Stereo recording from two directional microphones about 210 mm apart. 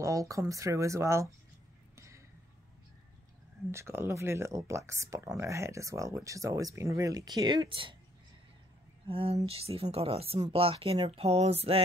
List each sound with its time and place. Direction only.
0.0 s speech: 15° right (ahead or behind)
2.0 s a sound: 15° right (ahead or behind)
3.7 s speech: 10° right (ahead or behind)
9.0 s speech: 25° right (ahead or behind)